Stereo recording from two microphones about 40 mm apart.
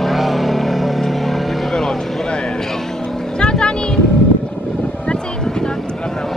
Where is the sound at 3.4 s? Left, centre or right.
Left.